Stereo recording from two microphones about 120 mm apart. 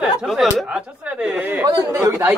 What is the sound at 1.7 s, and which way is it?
Speech, 30° right (ahead or behind).